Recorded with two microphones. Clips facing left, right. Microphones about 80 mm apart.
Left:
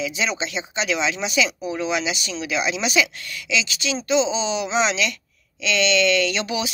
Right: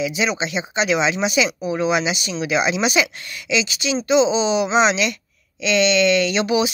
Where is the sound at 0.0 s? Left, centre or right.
Centre.